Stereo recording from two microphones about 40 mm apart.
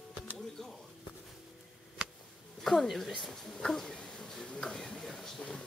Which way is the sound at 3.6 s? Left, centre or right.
Centre.